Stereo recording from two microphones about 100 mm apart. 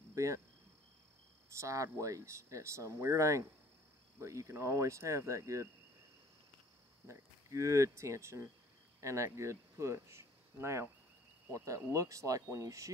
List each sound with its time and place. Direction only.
0.1 s cricket: 30° right (ahead or behind)
1.6 s speech: 35° right (ahead or behind)
7.1 s speech: 30° right (ahead or behind)